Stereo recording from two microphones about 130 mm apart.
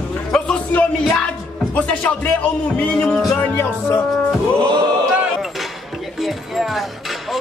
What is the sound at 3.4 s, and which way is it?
Music, 20° left (ahead or behind).